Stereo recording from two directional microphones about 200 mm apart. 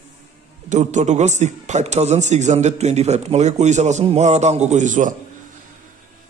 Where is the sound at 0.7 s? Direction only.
35° right (ahead or behind).